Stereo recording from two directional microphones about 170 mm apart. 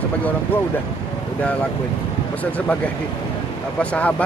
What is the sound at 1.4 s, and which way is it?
Speech, 10° left (ahead or behind).